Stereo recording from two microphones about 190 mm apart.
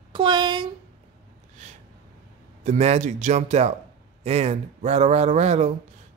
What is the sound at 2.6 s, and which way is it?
Speech, 35° right (ahead or behind).